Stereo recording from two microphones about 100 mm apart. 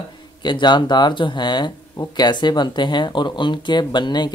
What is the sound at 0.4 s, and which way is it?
Speech, 50° left (ahead or behind).